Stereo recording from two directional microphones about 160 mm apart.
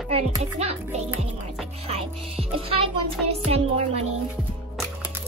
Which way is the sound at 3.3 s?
40° right (ahead or behind).